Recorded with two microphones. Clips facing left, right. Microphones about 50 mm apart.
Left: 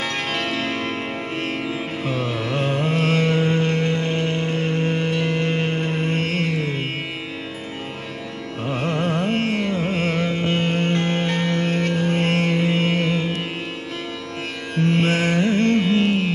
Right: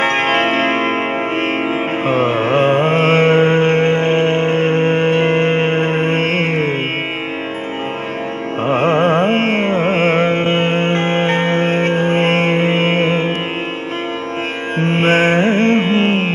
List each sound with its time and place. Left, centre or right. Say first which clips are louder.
0.0 s music: right 10 dB; right
8.6 s carnatic music: right 10 dB; right
14.8 s music: right 6 dB; right